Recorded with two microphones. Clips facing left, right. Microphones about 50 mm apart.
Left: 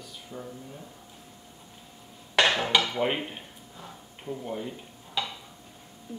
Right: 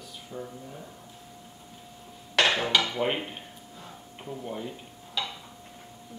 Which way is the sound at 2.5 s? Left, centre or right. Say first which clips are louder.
Left 1 dB; centre.